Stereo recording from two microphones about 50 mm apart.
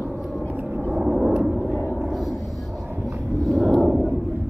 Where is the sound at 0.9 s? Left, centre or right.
Centre.